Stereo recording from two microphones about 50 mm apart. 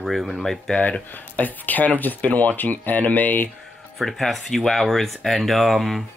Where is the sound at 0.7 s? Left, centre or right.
Left.